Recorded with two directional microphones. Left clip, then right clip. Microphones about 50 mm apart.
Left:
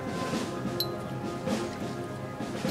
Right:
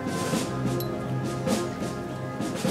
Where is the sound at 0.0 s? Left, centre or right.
Right.